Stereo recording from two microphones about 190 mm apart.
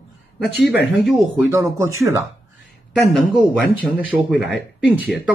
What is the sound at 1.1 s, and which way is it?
Speech, 10° right (ahead or behind).